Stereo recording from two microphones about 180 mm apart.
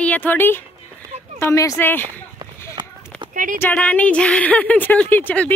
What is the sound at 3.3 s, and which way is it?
Speech, 45° right (ahead or behind).